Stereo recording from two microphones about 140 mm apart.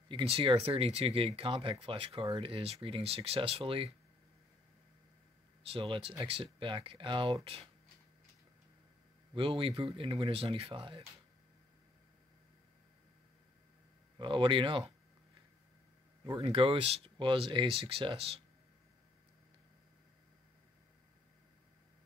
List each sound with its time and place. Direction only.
0.1 s speech: 40° right (ahead or behind)
5.7 s speech: 40° right (ahead or behind)
9.3 s speech: 40° right (ahead or behind)
14.1 s speech: 35° right (ahead or behind)
16.3 s speech: 40° right (ahead or behind)